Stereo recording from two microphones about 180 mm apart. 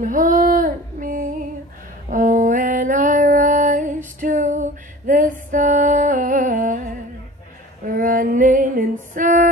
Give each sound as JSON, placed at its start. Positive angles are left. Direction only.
{"t": 0.0, "sound": "female singing", "side_deg": -45}